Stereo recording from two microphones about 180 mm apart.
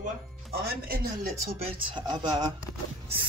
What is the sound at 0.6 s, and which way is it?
Speech, 55° right (ahead or behind).